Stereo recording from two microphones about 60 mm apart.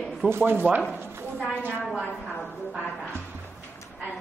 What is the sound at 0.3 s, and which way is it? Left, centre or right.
Chopping, right.